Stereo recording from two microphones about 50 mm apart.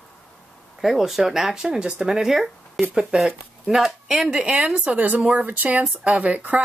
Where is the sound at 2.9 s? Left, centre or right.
Centre.